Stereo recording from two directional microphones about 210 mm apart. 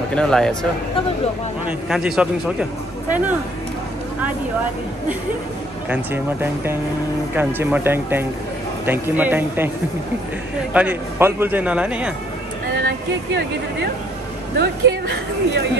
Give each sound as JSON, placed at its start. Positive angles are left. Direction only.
{"t": 0.1, "sound": "speech", "side_deg": 5}
{"t": 1.7, "sound": "speech", "side_deg": 0}
{"t": 5.9, "sound": "a man's voice", "side_deg": -10}
{"t": 10.7, "sound": "a man's voice", "side_deg": -5}
{"t": 14.6, "sound": "a woman's voice", "side_deg": -50}